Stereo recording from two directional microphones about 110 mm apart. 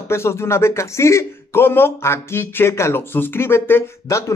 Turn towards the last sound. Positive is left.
turn(degrees=20)  # may be behind; listen again after turning